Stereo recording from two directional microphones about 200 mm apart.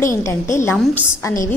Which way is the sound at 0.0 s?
15° left (ahead or behind).